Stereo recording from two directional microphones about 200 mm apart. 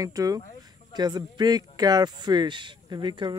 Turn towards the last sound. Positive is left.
turn(degrees=-25)  # may be behind; listen again after turning